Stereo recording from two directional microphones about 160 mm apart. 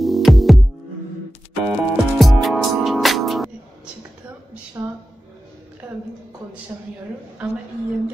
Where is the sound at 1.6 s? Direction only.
5° right (ahead or behind).